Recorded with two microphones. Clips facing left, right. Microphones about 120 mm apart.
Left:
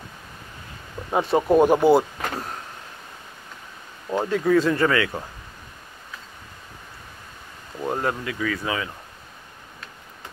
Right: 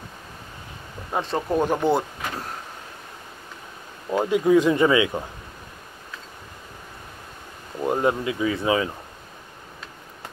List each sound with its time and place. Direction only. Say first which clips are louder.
1.1 s speech: left 6 dB; 10° left (ahead or behind)
1.9 s speech: left 5 dB; centre (ahead or behind)
4.1 s speech: right 2 dB; 10° right (ahead or behind)
7.8 s speech: right 4 dB; 15° right (ahead or behind)